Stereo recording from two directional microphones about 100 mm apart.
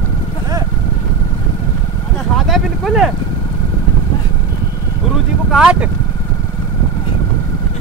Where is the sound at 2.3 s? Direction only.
Centre (ahead or behind).